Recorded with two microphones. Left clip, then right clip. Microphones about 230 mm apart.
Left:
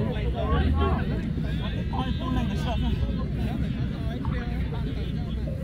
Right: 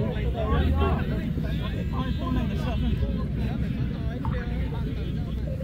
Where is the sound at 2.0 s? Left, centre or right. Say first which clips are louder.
Left 1 dB; left.